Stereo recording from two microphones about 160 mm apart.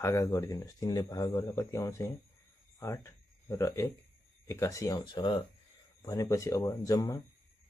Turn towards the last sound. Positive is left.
turn(degrees=20)  # may be behind; listen again after turning